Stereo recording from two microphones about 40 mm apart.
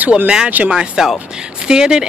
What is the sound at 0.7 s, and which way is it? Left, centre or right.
Speech, centre.